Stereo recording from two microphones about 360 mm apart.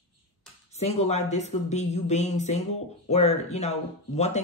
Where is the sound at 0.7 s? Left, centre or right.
Centre.